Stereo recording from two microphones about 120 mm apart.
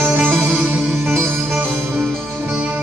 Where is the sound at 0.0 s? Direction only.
15° right (ahead or behind).